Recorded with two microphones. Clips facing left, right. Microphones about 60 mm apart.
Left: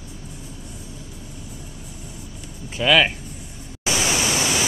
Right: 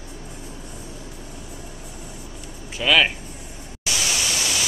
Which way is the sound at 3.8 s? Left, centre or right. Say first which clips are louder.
Left 4 dB; left.